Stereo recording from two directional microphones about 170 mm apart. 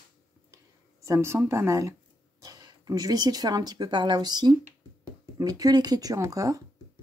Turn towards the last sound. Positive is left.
turn(degrees=-20)  # may be behind; listen again after turning